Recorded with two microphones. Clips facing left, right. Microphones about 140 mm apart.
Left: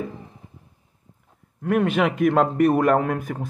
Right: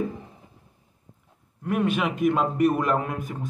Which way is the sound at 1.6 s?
55° left (ahead or behind).